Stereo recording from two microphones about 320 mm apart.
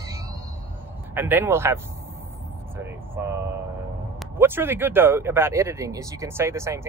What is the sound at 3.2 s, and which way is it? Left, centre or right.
Speech, centre.